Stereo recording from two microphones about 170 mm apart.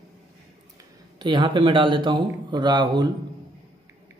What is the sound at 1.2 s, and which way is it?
Speech, 30° right (ahead or behind).